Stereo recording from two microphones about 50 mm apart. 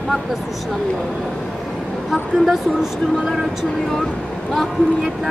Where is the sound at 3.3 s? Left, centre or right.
Centre.